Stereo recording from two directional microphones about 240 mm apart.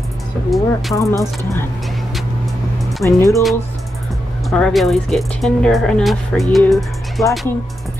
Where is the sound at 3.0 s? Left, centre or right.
Centre.